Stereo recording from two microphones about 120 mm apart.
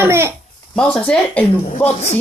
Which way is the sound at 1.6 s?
65° left (ahead or behind).